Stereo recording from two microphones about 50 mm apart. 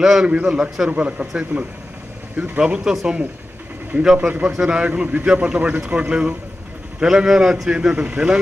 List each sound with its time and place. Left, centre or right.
0.0 s a man's voice: centre
4.3 s a man's voice: right